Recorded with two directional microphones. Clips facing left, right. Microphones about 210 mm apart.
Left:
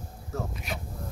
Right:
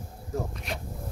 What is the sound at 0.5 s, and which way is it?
Speech, 5° left (ahead or behind).